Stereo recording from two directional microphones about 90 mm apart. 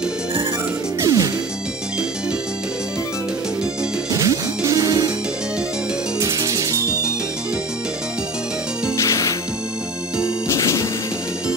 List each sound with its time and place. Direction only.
1.0 s music: 40° right (ahead or behind)
4.1 s music: 35° right (ahead or behind)
6.1 s music: 35° right (ahead or behind)
8.9 s music: 35° left (ahead or behind)
10.5 s music: 35° left (ahead or behind)